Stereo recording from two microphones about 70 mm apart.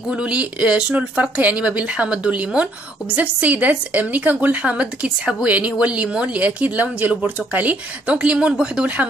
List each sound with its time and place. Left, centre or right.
0.1 s speech: centre